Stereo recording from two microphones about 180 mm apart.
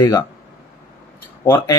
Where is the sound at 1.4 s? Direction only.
20° left (ahead or behind).